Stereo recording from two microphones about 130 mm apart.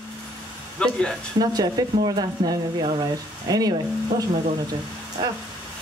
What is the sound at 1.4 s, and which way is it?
Speech, 30° right (ahead or behind).